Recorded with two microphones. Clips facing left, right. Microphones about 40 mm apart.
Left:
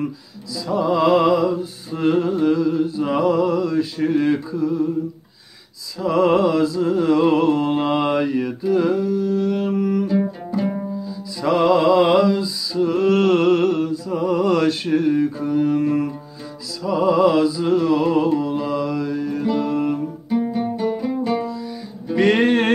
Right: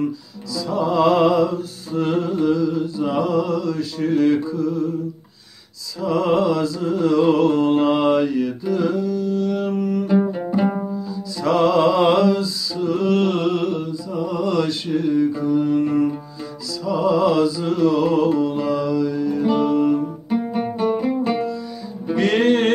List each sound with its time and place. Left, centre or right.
0.6 s music: centre
1.5 s mantra: left
6.0 s music: left
10.0 s music: right
11.4 s music: centre
12.7 s music: left
16.8 s mantra: left
17.6 s music: left
19.4 s music: right
19.7 s music: left
20.2 s music: right
22.1 s music: left